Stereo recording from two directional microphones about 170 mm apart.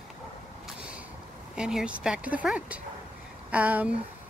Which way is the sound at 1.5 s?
5° right (ahead or behind).